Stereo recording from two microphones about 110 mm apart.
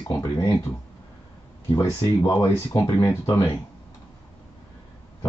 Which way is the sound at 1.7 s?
30° left (ahead or behind).